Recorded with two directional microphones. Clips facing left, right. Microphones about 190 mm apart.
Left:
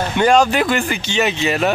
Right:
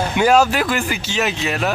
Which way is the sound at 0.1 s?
5° right (ahead or behind).